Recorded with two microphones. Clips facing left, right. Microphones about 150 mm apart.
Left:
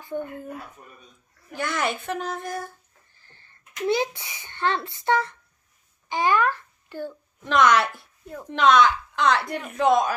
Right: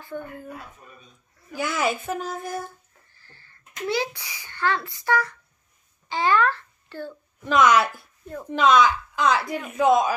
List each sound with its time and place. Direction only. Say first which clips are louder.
0.0 s speech: left 4 dB; 15° left (ahead or behind)
1.5 s speech: right 2 dB; 5° right (ahead or behind)
3.2 s a child's voice: right 3 dB; 20° left (ahead or behind)
7.4 s speech: right 1 dB; centre (ahead or behind)